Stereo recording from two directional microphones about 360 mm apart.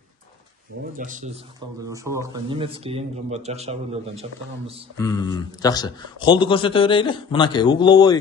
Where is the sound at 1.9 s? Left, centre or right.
Centre.